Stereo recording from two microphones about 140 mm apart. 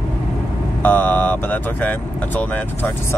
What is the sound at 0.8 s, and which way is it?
Speech, 10° left (ahead or behind).